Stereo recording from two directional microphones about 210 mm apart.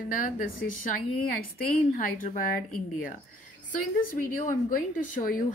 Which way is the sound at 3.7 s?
40° left (ahead or behind).